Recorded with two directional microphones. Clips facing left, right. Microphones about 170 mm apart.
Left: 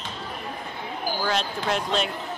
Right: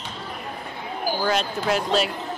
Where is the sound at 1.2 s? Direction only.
5° right (ahead or behind).